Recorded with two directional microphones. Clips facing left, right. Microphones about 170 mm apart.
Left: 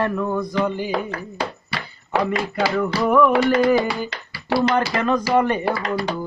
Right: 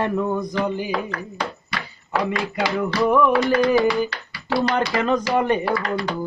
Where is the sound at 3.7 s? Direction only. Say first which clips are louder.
Right 3 dB; 20° left (ahead or behind).